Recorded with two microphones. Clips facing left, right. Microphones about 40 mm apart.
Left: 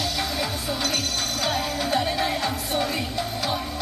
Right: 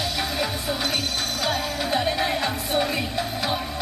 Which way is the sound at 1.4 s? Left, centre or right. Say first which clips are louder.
Even; centre.